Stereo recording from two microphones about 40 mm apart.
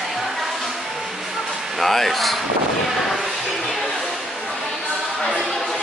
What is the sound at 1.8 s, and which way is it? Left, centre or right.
Speech, centre.